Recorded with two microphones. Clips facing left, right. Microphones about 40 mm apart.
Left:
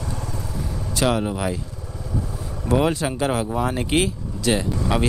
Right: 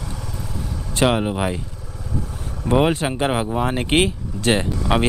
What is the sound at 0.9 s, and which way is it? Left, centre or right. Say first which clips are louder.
Speech: right 3 dB; right.